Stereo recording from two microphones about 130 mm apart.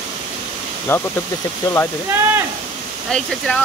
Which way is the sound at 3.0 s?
5° left (ahead or behind).